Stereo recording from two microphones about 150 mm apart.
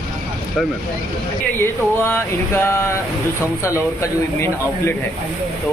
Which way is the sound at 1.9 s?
15° left (ahead or behind).